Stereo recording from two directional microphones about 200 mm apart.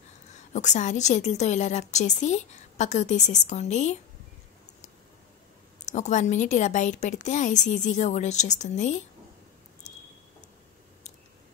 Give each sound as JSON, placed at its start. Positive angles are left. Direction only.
{"t": 0.5, "sound": "a woman's voice", "side_deg": 35}
{"t": 5.9, "sound": "a woman's voice", "side_deg": 35}